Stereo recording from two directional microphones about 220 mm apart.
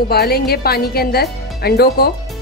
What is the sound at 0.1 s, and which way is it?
A woman's voice, 45° left (ahead or behind).